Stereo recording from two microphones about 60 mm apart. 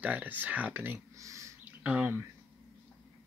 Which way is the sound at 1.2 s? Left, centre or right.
Right.